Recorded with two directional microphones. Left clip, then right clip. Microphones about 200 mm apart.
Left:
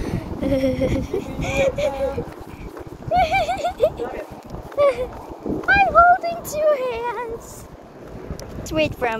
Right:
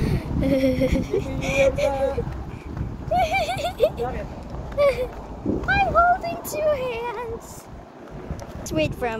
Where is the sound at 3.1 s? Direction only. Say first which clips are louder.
Left 3 dB; 15° right (ahead or behind).